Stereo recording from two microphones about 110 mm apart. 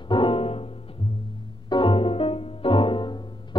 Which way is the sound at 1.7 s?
50° left (ahead or behind).